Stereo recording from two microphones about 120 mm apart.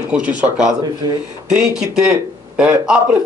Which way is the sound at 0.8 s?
35° right (ahead or behind).